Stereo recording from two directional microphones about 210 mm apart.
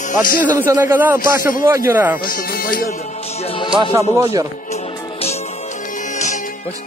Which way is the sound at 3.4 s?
25° left (ahead or behind).